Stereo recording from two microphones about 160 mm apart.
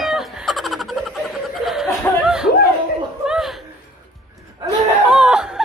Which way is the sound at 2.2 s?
5° right (ahead or behind).